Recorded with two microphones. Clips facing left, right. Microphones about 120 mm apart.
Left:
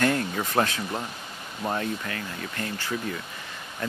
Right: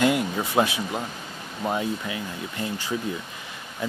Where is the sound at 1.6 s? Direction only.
10° right (ahead or behind).